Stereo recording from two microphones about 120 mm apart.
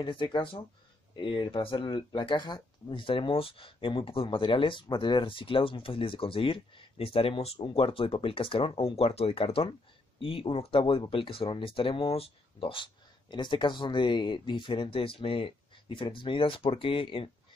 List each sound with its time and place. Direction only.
0.0 s speech: 45° left (ahead or behind)